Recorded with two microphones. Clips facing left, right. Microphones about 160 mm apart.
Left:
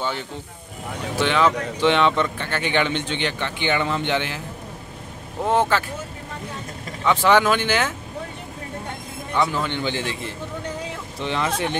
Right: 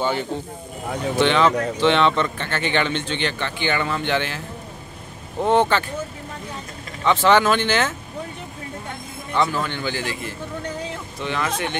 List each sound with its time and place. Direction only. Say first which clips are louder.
1.1 s speech: right 2 dB; 5° left (ahead or behind)
5.5 s speech: right 2 dB; 5° left (ahead or behind)
7.1 s speech: right 1 dB; 10° left (ahead or behind)
9.3 s a man's voice: even; 15° left (ahead or behind)